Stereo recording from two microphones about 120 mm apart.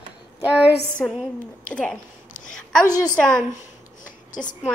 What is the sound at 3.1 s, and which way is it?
Speech, 10° left (ahead or behind).